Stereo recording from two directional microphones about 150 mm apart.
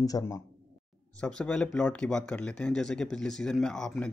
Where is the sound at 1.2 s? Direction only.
5° left (ahead or behind).